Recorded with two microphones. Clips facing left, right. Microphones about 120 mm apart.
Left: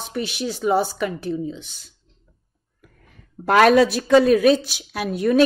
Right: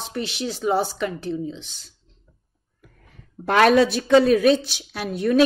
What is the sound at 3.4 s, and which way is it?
Speech, 45° left (ahead or behind).